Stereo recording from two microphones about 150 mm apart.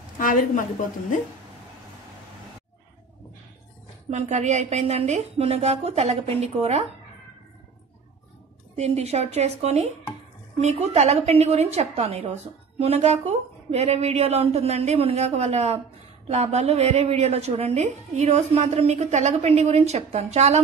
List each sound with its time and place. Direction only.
0.2 s a woman's voice: 65° left (ahead or behind)
4.1 s a woman's voice: 50° right (ahead or behind)
8.7 s a woman's voice: 45° right (ahead or behind)